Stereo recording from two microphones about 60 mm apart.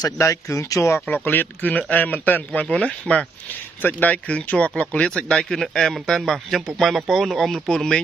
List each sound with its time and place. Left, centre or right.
0.0 s speech: left
1.2 s a man's voice: left
2.6 s a man's voice: centre